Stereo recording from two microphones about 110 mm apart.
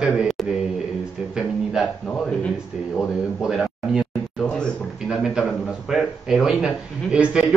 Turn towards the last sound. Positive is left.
turn(degrees=-10)  # may be behind; listen again after turning